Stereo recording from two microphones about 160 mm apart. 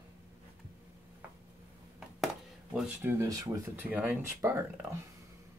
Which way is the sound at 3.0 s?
15° right (ahead or behind).